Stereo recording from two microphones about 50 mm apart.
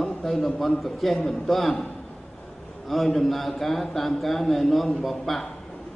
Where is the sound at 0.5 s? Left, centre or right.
Centre.